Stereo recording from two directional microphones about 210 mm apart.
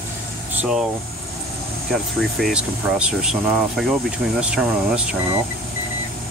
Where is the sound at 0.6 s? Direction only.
5° right (ahead or behind).